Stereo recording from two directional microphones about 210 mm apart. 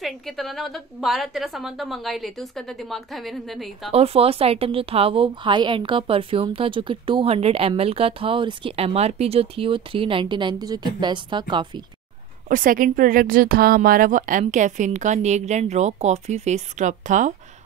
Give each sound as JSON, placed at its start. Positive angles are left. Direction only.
{"t": 0.0, "sound": "a woman's voice", "side_deg": 0}
{"t": 3.9, "sound": "a woman's voice", "side_deg": -30}
{"t": 12.4, "sound": "a woman's voice", "side_deg": -40}